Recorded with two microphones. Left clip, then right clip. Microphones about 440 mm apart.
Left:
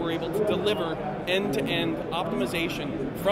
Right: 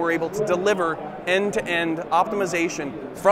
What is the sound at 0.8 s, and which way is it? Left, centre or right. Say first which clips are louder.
Speech: right 4 dB; right.